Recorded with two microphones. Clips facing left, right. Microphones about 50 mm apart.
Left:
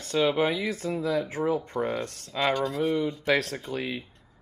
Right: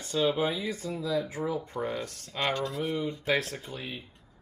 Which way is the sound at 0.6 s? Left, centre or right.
Left.